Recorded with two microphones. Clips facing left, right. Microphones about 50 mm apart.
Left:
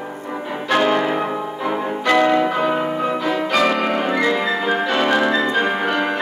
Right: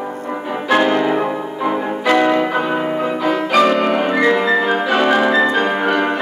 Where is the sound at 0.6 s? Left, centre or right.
Centre.